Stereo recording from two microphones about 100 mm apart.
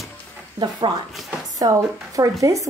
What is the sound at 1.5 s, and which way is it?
Speech, 35° right (ahead or behind).